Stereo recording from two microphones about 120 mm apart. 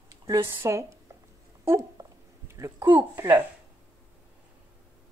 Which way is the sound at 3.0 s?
20° right (ahead or behind).